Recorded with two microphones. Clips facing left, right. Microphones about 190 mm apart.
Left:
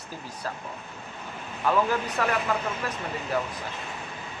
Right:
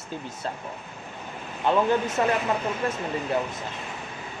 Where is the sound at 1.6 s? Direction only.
25° right (ahead or behind).